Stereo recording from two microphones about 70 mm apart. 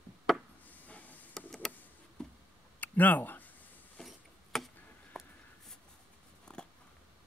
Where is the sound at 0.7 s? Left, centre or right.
Left.